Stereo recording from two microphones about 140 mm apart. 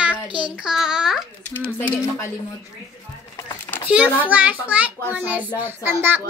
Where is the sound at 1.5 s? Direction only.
15° left (ahead or behind).